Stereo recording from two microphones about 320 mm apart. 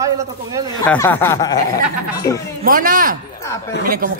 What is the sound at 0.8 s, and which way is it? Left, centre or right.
Speech, centre.